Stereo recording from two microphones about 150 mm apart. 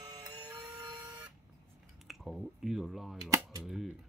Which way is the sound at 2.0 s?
Centre (ahead or behind).